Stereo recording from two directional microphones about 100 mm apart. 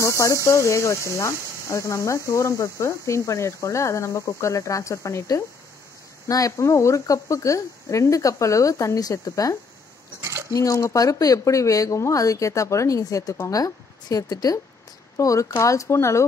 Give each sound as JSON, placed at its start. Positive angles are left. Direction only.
{"t": 0.2, "sound": "speech", "side_deg": 30}